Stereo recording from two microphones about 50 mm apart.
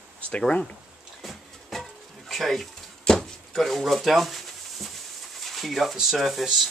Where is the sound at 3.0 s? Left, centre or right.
Centre.